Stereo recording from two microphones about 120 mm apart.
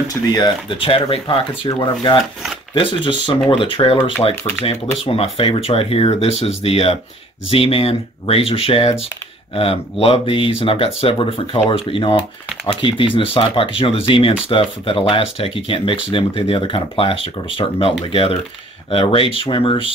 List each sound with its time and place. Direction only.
0.1 s speech: 30° left (ahead or behind)
0.7 s speech: 45° left (ahead or behind)
1.7 s speech: 35° left (ahead or behind)